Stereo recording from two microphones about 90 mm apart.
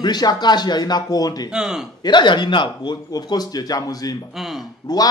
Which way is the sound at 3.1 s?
45° left (ahead or behind).